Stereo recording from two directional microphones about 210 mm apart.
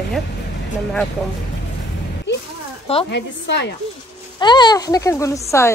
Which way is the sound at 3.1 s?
55° left (ahead or behind).